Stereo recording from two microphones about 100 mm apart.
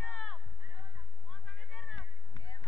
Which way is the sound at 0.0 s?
15° left (ahead or behind).